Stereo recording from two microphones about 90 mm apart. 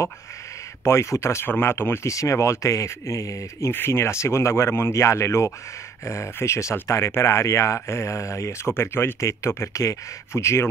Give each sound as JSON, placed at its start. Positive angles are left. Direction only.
{"t": 0.8, "sound": "speech", "side_deg": 30}